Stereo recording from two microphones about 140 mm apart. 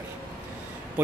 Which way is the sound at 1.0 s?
10° right (ahead or behind).